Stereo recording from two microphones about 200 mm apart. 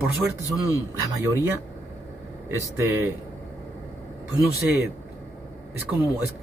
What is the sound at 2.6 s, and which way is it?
Speech, 15° right (ahead or behind).